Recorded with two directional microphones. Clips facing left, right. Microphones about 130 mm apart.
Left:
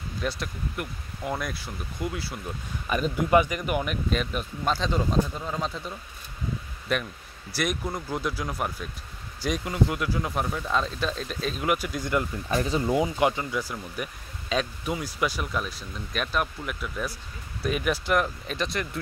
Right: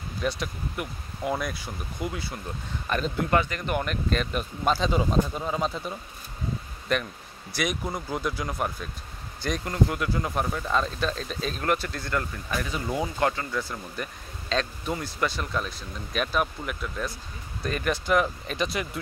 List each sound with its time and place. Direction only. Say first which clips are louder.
0.2 s speech: right 2 dB; centre (ahead or behind)
6.9 s speech: right 1 dB; 5° left (ahead or behind)
12.4 s speech: left 5 dB; 30° left (ahead or behind)
12.8 s speech: left 1 dB; 15° left (ahead or behind); by 18.9 s 5° right (ahead or behind)